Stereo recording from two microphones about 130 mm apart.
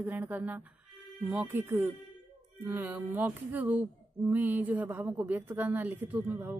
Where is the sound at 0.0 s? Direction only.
15° right (ahead or behind).